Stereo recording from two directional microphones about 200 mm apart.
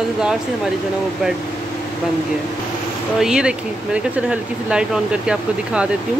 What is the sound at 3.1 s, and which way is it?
Speech, 5° right (ahead or behind).